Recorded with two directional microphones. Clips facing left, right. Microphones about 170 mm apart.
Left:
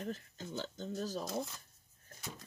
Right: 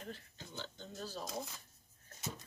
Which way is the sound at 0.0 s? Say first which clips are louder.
Left 7 dB; 40° left (ahead or behind).